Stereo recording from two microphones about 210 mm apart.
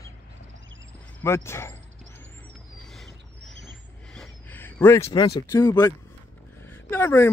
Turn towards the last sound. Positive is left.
turn(degrees=10)  # may be behind; listen again after turning